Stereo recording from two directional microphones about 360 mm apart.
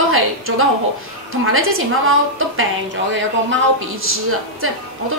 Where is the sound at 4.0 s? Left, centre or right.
Right.